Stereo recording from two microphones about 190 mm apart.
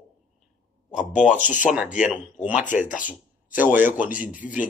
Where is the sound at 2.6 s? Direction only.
40° left (ahead or behind).